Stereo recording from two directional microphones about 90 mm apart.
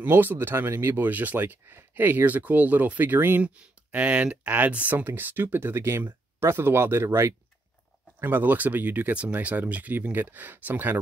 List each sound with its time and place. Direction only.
0.0 s speech: 25° right (ahead or behind)